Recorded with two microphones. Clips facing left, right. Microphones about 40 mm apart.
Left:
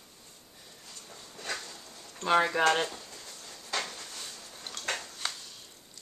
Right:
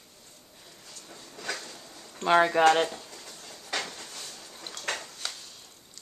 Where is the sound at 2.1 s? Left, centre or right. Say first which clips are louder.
Right 4 dB; centre.